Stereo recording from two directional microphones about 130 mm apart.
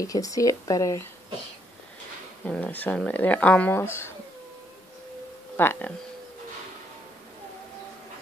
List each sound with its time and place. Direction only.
0.0 s speech: 25° left (ahead or behind)
2.4 s speech: 10° left (ahead or behind)
5.6 s speech: 15° left (ahead or behind)